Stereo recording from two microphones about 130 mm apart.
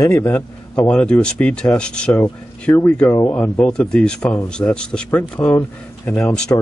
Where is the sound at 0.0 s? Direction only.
20° left (ahead or behind).